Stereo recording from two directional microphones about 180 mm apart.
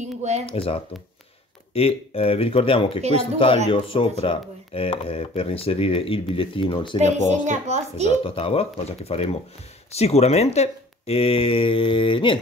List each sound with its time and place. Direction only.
0.0 s a sound: 40° right (ahead or behind)
0.5 s speech: 30° left (ahead or behind)
7.0 s a child's voice: 40° right (ahead or behind)
8.2 s speech: 30° left (ahead or behind)